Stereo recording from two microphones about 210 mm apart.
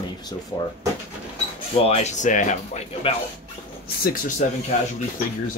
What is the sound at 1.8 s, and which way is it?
Speech, 30° left (ahead or behind).